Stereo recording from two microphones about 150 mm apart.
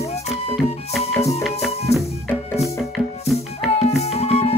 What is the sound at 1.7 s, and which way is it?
Music, 45° left (ahead or behind).